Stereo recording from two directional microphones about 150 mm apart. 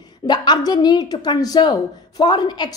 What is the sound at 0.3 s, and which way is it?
A woman's voice, 30° left (ahead or behind).